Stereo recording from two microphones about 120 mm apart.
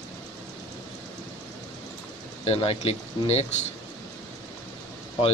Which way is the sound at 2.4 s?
55° left (ahead or behind).